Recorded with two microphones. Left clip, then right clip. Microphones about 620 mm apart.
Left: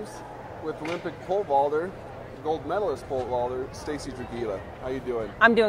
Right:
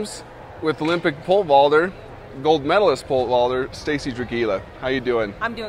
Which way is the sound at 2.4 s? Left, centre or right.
Right.